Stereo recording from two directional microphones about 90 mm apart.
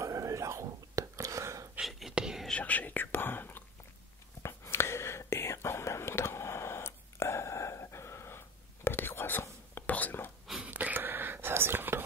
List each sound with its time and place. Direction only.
0.0 s whispering: 35° right (ahead or behind)
1.8 s whispering: 5° right (ahead or behind)
2.4 s whispering: 15° left (ahead or behind)
10.6 s whispering: 15° right (ahead or behind)